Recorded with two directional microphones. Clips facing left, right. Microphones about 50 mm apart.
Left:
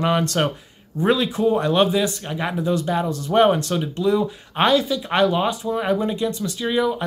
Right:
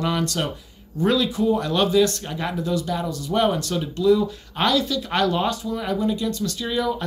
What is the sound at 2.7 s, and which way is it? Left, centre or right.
Speech, left.